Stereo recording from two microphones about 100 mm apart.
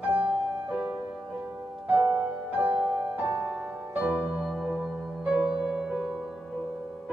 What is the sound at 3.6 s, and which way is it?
Music, 15° right (ahead or behind).